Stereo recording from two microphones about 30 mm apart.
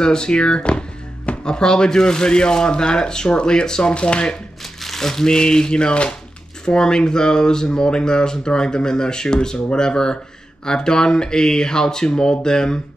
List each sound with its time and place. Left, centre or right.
0.0 s music: left
1.4 s speech: left
4.8 s speech: centre